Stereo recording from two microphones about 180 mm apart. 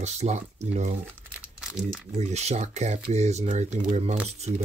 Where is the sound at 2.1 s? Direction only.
40° right (ahead or behind).